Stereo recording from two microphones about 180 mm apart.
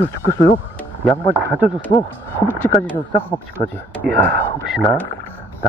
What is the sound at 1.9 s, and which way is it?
Speech, 30° left (ahead or behind).